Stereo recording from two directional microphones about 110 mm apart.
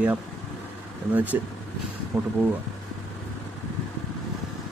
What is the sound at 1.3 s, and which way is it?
Speech, 20° right (ahead or behind).